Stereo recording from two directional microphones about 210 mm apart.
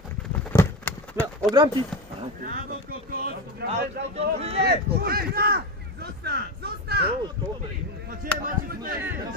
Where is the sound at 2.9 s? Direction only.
45° right (ahead or behind).